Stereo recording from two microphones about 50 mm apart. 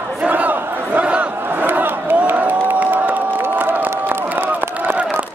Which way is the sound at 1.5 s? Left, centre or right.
Right.